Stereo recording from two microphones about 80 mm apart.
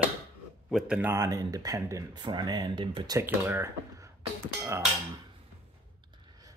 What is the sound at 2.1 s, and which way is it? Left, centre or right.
Speech, right.